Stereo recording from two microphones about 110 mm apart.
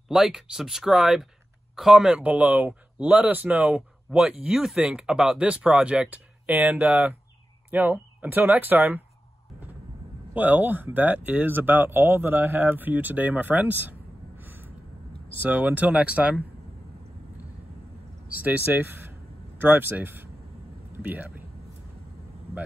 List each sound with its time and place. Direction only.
0.1 s speech: centre (ahead or behind)
10.3 s speech: 15° right (ahead or behind)
18.4 s speech: 15° right (ahead or behind)